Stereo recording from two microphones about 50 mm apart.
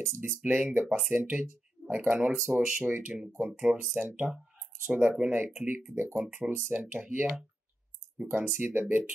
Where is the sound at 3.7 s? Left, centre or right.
Centre.